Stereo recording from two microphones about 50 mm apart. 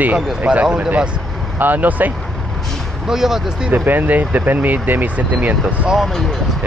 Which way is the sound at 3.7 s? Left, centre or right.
Right.